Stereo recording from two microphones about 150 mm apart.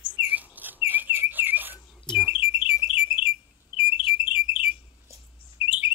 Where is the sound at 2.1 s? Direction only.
5° left (ahead or behind).